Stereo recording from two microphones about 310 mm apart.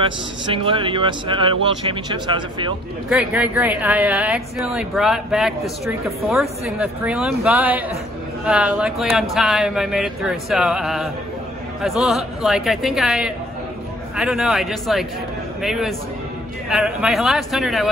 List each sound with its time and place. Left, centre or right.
0.0 s speech: centre
3.1 s a woman's voice: centre